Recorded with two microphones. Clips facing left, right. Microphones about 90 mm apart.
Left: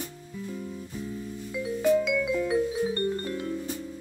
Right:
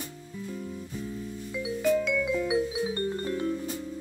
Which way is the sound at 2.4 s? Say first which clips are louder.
Left 2 dB; 10° right (ahead or behind).